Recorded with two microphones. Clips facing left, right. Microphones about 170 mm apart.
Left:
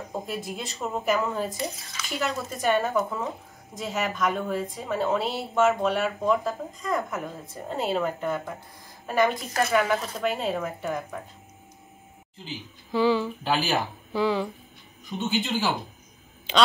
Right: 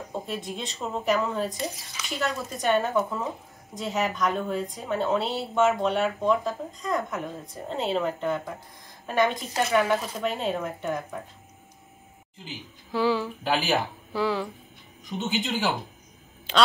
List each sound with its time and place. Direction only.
0.1 s a woman's voice: 5° left (ahead or behind)
12.4 s a woman's voice: 5° right (ahead or behind)
15.1 s speech: 20° right (ahead or behind)